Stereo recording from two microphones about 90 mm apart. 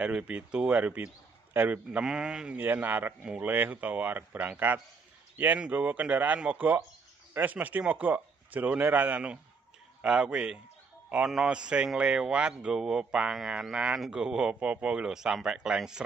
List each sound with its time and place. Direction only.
0.0 s a man's voice: 10° right (ahead or behind)